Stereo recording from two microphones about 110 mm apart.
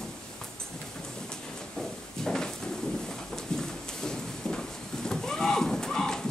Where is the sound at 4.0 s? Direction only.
5° left (ahead or behind).